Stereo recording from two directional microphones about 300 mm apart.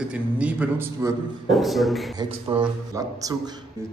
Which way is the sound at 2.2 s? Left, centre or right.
Centre.